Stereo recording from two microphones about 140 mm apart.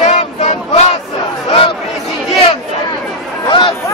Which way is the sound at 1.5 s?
40° left (ahead or behind).